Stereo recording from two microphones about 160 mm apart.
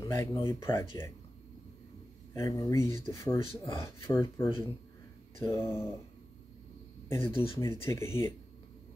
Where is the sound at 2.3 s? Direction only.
20° left (ahead or behind).